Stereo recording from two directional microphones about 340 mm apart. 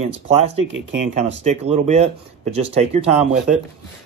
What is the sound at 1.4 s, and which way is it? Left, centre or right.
Speech, centre.